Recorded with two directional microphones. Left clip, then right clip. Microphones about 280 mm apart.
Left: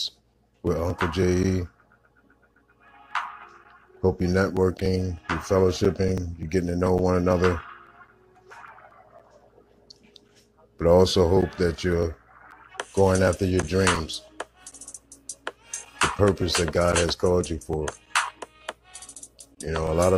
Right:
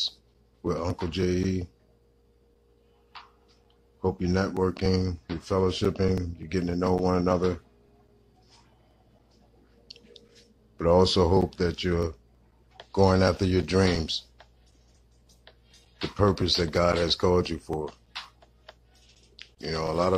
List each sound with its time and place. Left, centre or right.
0.6 s speech: centre
4.0 s speech: centre
4.8 s speech: centre
5.4 s speech: centre
10.8 s speech: centre
16.2 s speech: centre
18.1 s music: left
19.6 s speech: centre